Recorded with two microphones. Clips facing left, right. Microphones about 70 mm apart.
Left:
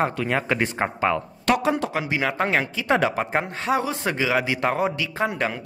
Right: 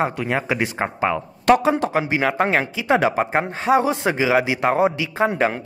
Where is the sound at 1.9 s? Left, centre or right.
Right.